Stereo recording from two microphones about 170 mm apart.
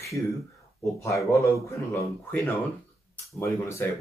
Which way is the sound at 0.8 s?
20° left (ahead or behind).